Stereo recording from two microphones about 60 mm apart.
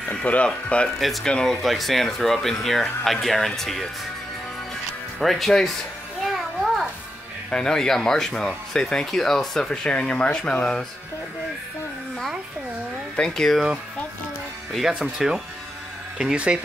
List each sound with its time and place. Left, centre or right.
0.1 s speech: left
0.9 s speech: centre
5.2 s speech: centre
6.3 s a sound: centre
7.5 s speech: centre
13.1 s speech: centre
14.7 s speech: centre